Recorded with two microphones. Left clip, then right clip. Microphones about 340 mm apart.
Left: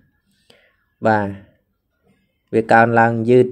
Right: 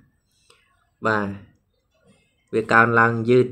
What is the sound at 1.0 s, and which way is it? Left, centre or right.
Speech, left.